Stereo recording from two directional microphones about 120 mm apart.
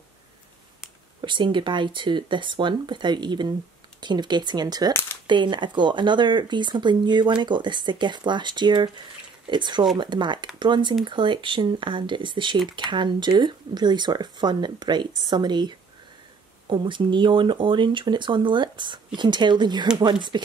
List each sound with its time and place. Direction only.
1.2 s speech: 40° right (ahead or behind)